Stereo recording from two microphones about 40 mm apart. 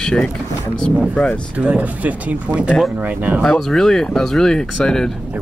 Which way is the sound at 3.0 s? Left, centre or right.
Right.